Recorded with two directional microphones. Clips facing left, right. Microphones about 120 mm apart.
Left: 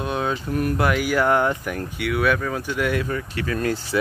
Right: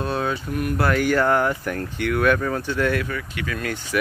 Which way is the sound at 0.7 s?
10° left (ahead or behind).